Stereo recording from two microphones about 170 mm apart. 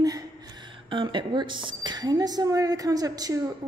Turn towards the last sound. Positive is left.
turn(degrees=-20)  # may be behind; listen again after turning